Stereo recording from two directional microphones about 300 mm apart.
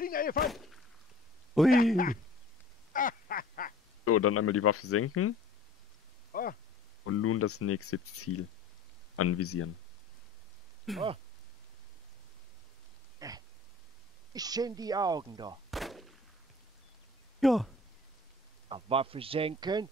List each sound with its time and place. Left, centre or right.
0.0 s speech: left
0.5 s speech: centre
2.9 s quack: left
4.0 s speech: left
6.3 s speech: left
7.1 s speech: left
10.9 s speech: centre
13.2 s a sound: centre
14.3 s speech: centre
15.7 s gunshot: centre
17.4 s speech: centre
18.7 s speech: centre